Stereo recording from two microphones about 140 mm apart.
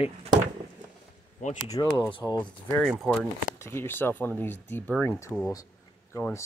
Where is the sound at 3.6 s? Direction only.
15° left (ahead or behind).